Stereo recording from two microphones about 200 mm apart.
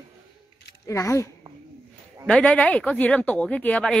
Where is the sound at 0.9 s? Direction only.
15° left (ahead or behind).